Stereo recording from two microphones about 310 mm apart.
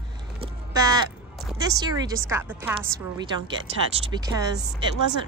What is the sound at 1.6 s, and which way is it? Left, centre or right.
A woman's voice, centre.